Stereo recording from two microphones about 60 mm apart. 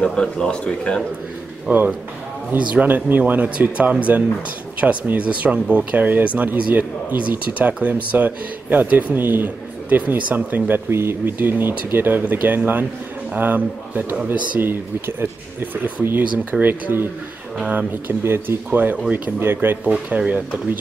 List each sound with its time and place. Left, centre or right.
0.0 s speech: centre
1.7 s speech: right
10.9 s speech: right
18.2 s speech: right
18.7 s speech: right
19.4 s speech: right
19.8 s speech: right